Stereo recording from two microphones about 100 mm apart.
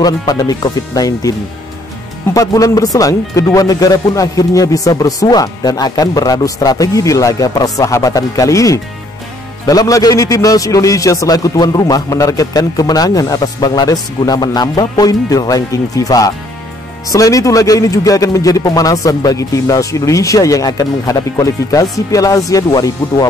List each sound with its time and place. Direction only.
0.0 s speech: 40° left (ahead or behind)
2.3 s speech: 35° left (ahead or behind)